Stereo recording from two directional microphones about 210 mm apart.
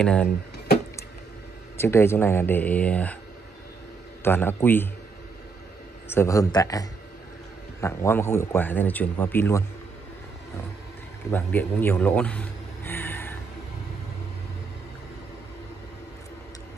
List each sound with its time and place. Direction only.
0.0 s speech: 5° left (ahead or behind)
1.8 s speech: 10° left (ahead or behind)
4.2 s speech: 10° left (ahead or behind)
6.0 s speech: 15° left (ahead or behind)
11.3 s speech: 10° left (ahead or behind)